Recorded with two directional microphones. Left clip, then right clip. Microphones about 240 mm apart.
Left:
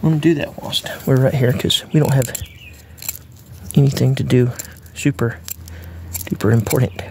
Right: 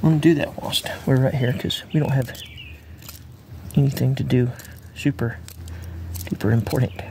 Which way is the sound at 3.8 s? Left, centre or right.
Centre.